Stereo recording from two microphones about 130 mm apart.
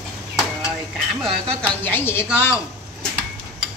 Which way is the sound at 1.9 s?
15° left (ahead or behind).